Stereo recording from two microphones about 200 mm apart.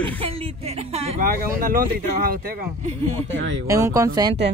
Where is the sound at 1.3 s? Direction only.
45° right (ahead or behind).